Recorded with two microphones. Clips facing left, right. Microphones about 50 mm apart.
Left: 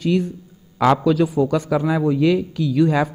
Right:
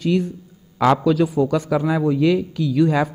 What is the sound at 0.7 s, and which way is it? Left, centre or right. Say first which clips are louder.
Speech: even; centre.